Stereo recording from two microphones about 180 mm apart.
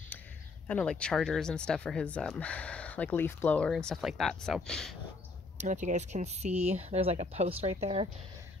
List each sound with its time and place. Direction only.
0.7 s speech: 5° left (ahead or behind)
5.6 s speech: 45° right (ahead or behind)